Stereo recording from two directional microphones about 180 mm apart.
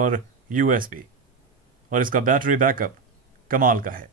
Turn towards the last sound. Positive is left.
turn(degrees=-50)  # may be behind; listen again after turning